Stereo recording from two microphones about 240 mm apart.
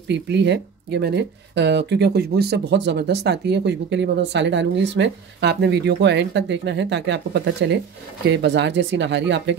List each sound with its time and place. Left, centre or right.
0.1 s speech: right